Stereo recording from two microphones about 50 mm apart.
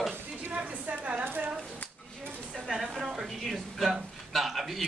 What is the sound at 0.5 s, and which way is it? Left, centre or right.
Speech, right.